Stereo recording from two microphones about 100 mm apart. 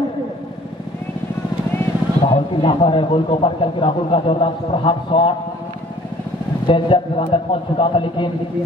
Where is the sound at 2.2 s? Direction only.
55° left (ahead or behind).